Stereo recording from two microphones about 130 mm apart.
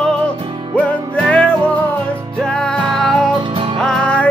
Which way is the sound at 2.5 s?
5° left (ahead or behind).